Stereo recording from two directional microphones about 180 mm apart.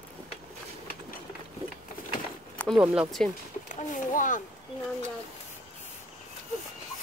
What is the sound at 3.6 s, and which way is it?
Speech, 45° left (ahead or behind).